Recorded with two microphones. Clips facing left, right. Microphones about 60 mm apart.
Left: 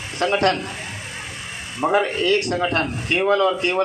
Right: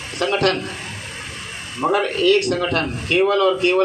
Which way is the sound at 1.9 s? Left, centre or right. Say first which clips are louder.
Right 2 dB; left.